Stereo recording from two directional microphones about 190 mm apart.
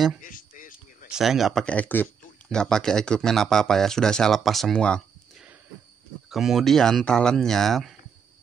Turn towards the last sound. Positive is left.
turn(degrees=0)  # may be behind; listen again after turning